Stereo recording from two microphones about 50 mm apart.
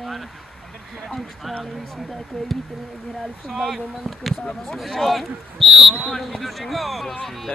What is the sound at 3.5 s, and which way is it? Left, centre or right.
Speech, centre.